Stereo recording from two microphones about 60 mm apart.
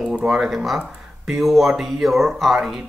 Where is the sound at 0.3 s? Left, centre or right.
Centre.